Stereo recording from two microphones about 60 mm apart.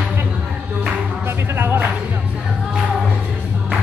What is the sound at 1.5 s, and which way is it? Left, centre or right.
Music, right.